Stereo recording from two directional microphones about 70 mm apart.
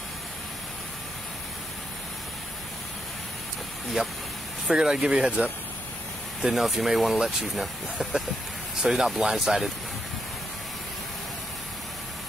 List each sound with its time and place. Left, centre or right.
4.0 s speech: centre
6.4 s speech: centre